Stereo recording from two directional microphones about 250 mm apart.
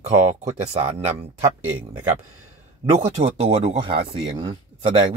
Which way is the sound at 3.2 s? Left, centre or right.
Right.